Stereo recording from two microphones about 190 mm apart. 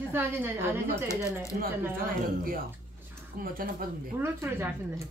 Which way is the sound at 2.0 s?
50° right (ahead or behind).